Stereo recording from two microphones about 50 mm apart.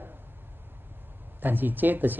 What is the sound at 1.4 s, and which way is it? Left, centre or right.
Speech, right.